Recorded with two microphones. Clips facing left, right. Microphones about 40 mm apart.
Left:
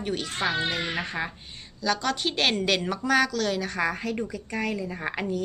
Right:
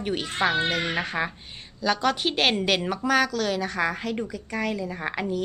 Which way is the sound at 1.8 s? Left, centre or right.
Centre.